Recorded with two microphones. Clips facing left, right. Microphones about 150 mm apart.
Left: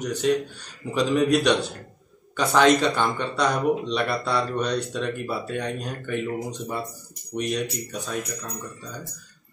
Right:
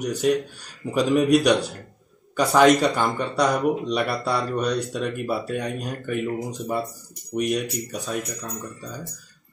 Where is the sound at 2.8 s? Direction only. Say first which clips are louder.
Right 1 dB; centre (ahead or behind).